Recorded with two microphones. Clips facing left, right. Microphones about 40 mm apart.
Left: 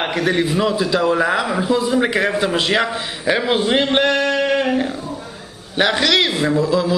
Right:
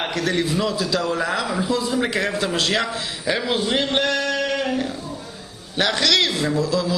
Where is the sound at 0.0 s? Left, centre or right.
Centre.